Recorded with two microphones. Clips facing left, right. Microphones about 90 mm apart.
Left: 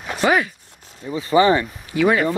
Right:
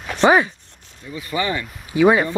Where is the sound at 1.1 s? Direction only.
30° left (ahead or behind).